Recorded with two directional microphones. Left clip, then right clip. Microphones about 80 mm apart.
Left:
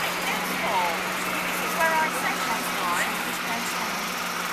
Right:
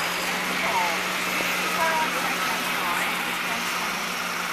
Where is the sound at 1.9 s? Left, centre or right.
Right.